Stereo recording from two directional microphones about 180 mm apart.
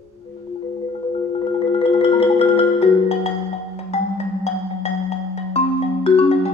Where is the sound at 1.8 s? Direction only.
30° left (ahead or behind).